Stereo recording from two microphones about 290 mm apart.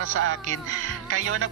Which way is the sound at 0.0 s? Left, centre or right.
Right.